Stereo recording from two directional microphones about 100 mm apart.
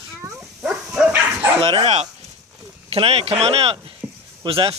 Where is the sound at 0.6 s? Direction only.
10° right (ahead or behind).